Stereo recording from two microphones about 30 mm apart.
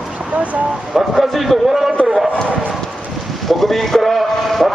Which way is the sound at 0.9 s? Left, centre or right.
Centre.